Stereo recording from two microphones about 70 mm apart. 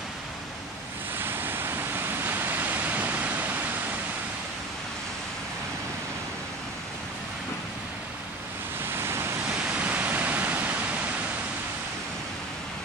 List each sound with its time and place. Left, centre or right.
1.1 s waves: right
8.9 s waves: right
9.6 s waves: right